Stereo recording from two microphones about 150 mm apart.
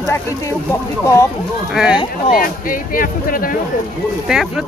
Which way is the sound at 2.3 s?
70° left (ahead or behind).